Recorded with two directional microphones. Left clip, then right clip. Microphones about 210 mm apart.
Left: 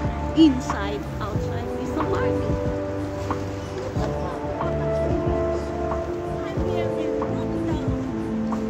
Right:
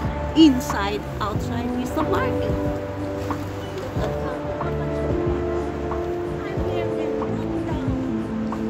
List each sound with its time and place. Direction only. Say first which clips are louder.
0.4 s speech: right 2 dB; 55° right (ahead or behind)